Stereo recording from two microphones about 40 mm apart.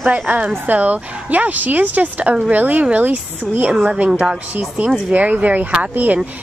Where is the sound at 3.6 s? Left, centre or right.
Right.